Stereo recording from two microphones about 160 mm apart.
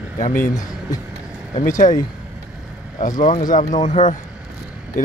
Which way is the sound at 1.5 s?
55° left (ahead or behind).